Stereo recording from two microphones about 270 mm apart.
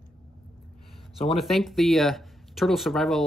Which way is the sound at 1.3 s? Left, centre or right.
Centre.